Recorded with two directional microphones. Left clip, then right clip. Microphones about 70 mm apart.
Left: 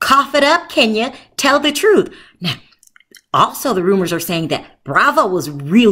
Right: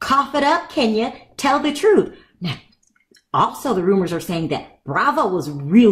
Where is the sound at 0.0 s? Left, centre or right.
Left.